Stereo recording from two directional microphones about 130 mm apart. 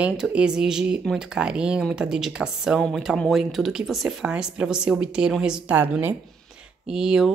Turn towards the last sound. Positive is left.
turn(degrees=-5)  # may be behind; listen again after turning